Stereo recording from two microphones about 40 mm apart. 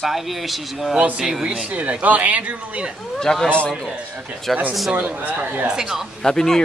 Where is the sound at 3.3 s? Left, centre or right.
Centre.